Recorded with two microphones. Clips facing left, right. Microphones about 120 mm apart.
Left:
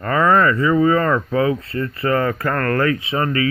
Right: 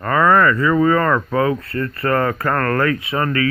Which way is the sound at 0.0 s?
35° right (ahead or behind).